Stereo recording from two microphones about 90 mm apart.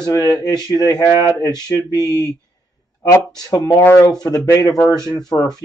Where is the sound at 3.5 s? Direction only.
40° left (ahead or behind).